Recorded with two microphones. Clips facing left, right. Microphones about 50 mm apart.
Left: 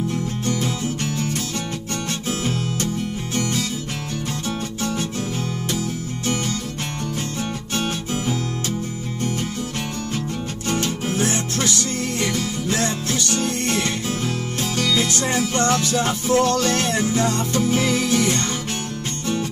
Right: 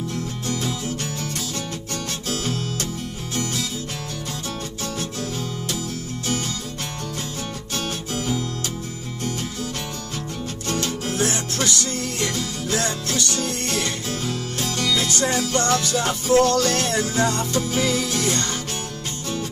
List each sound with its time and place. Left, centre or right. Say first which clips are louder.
0.1 s music: left 3 dB; left
2.4 s music: left 3 dB; left
10.7 s music: left 2 dB; left